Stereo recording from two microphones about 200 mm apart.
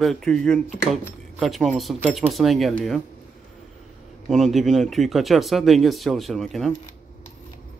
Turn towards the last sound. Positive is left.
turn(degrees=0)  # may be behind; listen again after turning